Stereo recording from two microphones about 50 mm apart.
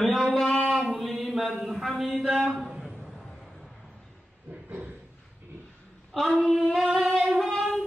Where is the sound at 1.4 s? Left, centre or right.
Centre.